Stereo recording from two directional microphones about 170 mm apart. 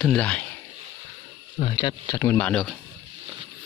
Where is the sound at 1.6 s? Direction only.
25° left (ahead or behind); by 2.7 s 5° left (ahead or behind).